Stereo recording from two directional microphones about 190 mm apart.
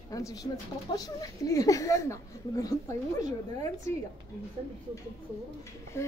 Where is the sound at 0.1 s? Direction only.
20° left (ahead or behind).